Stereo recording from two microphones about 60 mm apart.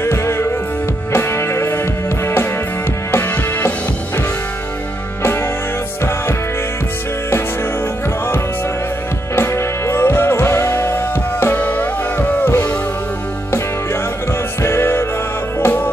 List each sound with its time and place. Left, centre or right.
0.0 s music: left
3.1 s music: left
9.3 s music: left
14.6 s music: left